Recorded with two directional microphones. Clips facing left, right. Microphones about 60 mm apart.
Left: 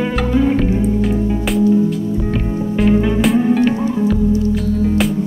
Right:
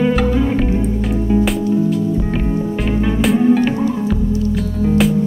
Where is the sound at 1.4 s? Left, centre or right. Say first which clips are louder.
Left 2 dB; centre.